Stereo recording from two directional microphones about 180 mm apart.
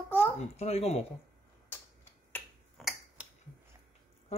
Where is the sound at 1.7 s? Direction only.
10° left (ahead or behind).